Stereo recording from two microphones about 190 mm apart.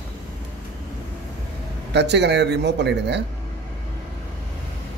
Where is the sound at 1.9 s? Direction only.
65° right (ahead or behind).